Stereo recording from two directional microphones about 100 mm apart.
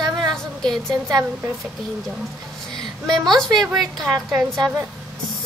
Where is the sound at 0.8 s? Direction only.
35° right (ahead or behind).